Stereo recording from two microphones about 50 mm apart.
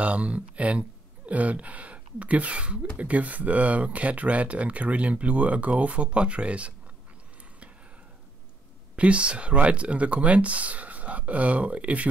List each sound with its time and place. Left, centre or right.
0.0 s speech: right
8.9 s speech: right